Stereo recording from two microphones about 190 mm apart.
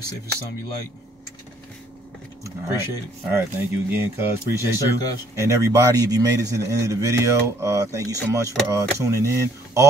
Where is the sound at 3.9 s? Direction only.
10° right (ahead or behind).